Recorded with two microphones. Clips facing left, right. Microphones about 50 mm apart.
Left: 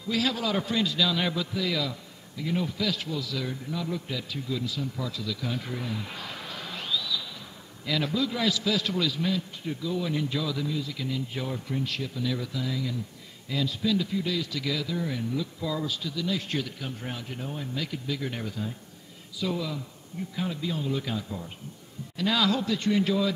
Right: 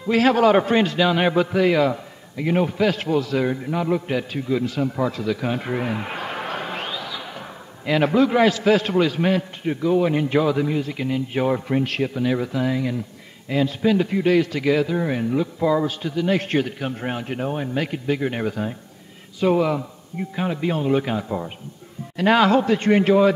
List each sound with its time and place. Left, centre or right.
0.0 s a man's voice: right